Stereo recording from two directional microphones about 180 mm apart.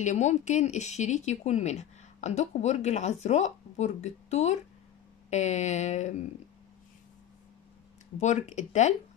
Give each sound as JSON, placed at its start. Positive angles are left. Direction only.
{"t": 0.0, "sound": "speech", "side_deg": 40}
{"t": 8.2, "sound": "speech", "side_deg": 40}